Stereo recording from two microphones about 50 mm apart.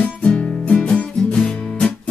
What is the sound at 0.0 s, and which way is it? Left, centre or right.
Music, left.